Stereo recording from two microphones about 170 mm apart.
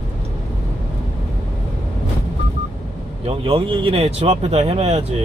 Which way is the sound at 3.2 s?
30° right (ahead or behind).